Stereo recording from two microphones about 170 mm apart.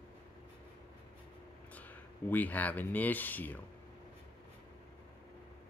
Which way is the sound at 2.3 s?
10° left (ahead or behind).